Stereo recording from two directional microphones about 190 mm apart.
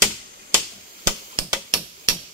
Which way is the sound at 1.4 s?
15° left (ahead or behind).